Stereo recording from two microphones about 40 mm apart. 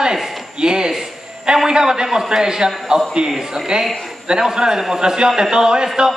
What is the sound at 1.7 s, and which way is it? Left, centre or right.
A man's voice, centre.